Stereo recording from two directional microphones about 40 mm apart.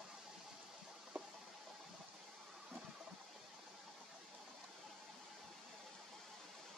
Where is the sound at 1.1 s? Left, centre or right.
Right.